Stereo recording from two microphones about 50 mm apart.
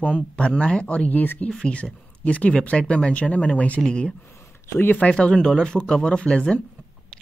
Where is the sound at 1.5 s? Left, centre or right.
Left.